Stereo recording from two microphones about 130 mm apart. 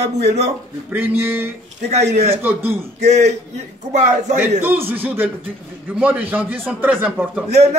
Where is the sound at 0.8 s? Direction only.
15° right (ahead or behind).